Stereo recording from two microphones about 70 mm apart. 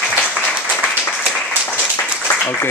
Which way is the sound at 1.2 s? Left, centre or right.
Centre.